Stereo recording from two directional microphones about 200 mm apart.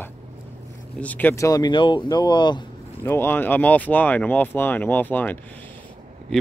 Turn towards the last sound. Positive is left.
turn(degrees=10)  # may be behind; listen again after turning